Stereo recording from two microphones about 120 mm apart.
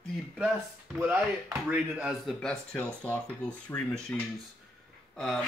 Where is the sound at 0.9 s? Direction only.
15° right (ahead or behind).